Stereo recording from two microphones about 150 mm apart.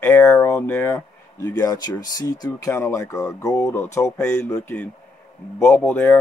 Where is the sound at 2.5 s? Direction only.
15° left (ahead or behind).